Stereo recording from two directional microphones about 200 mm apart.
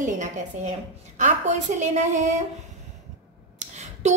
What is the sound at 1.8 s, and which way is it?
Speech, 35° right (ahead or behind).